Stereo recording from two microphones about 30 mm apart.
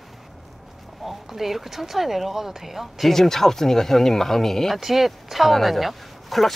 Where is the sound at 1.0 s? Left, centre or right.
Centre.